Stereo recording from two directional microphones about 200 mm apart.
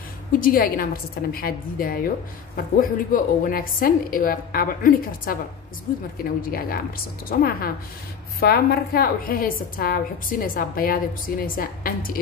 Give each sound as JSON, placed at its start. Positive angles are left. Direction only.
{"t": 0.4, "sound": "a woman's voice", "side_deg": 45}
{"t": 6.4, "sound": "a woman's voice", "side_deg": 45}